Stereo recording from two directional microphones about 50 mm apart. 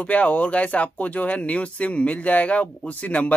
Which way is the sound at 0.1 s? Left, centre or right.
Left.